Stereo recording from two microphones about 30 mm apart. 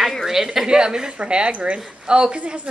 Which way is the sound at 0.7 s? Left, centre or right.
Right.